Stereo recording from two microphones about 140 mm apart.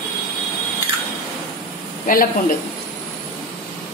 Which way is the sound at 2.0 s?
85° left.